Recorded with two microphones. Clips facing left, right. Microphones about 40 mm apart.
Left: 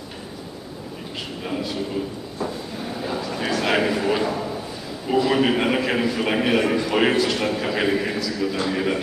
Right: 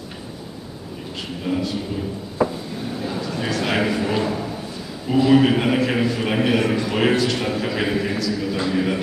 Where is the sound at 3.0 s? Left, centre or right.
Centre.